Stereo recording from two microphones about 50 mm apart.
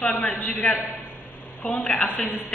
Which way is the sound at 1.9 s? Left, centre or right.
Left.